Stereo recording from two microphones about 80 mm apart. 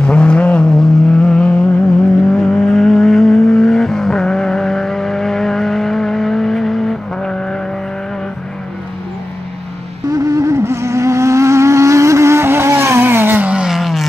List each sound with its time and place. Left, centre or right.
0.0 s vehicle: centre
10.1 s vehicle: right
13.5 s vehicle: centre
13.7 s vehicle: centre